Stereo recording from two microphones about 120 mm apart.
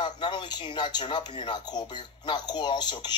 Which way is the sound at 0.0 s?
40° left (ahead or behind).